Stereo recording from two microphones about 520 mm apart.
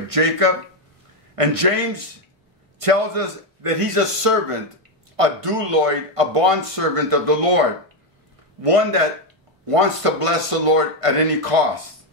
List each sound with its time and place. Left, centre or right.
0.1 s speech: right
8.6 s speech: right